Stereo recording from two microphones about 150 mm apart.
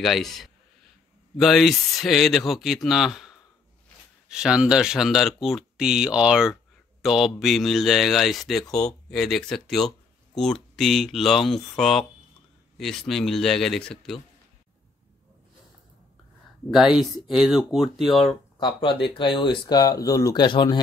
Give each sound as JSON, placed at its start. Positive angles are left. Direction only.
{"t": 0.0, "sound": "speech", "side_deg": 0}
{"t": 16.7, "sound": "speech", "side_deg": 0}
{"t": 18.6, "sound": "speech", "side_deg": 35}